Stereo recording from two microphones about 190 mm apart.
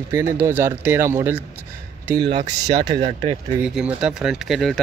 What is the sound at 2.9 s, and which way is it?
Speech, 30° right (ahead or behind).